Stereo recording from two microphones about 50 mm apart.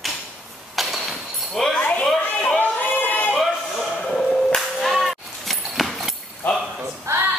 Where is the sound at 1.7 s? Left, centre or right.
Left.